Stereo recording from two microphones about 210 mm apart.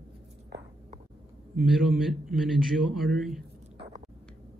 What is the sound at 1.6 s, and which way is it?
A man's voice, centre (ahead or behind).